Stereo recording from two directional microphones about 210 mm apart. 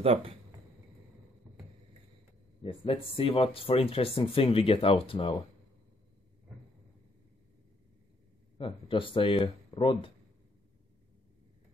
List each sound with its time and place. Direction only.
0.0 s speech: 25° right (ahead or behind)
2.6 s speech: 25° left (ahead or behind)
8.5 s speech: 25° left (ahead or behind)